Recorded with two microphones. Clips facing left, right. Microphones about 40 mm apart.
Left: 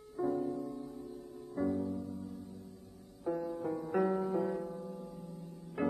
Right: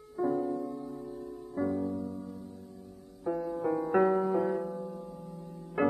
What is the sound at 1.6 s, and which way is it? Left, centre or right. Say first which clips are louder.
Music: right 3 dB; centre.